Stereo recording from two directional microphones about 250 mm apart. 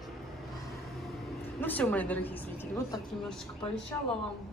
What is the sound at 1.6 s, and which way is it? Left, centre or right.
A woman's voice, centre.